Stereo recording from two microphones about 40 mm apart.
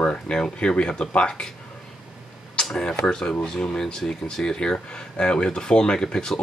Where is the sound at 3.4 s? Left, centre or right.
Centre.